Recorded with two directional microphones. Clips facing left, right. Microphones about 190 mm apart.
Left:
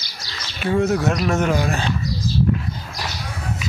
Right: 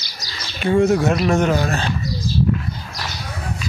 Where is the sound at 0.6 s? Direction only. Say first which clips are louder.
Right 3 dB; centre (ahead or behind).